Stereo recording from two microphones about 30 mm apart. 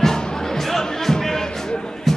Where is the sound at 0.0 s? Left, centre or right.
Centre.